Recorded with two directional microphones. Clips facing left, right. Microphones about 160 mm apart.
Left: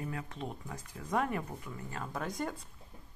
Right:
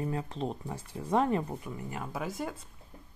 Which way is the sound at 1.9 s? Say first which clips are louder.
Right 1 dB; 10° right (ahead or behind).